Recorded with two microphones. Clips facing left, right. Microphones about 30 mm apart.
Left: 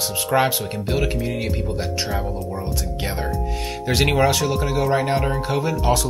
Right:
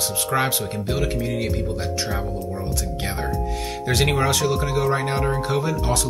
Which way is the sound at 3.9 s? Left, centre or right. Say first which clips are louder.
Left 3 dB; centre.